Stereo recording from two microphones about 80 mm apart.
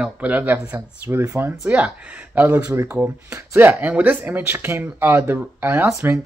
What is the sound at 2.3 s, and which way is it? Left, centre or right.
Speech, right.